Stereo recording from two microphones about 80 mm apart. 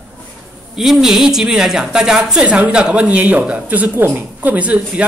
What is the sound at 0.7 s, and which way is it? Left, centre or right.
A woman's voice, centre.